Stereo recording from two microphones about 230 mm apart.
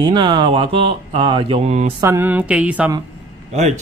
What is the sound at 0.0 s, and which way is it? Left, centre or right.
Speech, centre.